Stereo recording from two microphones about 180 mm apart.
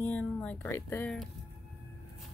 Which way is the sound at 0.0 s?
5° left (ahead or behind).